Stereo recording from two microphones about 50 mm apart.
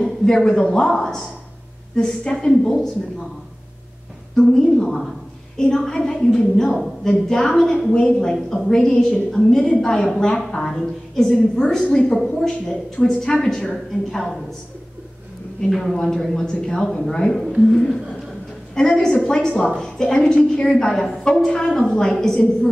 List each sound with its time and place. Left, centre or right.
0.0 s a woman's voice: centre
4.4 s a woman's voice: centre
15.7 s a woman's voice: centre